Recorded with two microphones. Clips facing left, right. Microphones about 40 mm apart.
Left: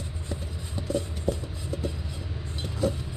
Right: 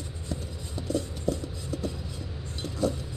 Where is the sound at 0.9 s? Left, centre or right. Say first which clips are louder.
Even; centre.